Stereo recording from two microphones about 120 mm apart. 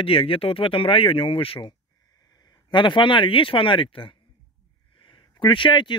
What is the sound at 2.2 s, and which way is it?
Speech, 30° left (ahead or behind).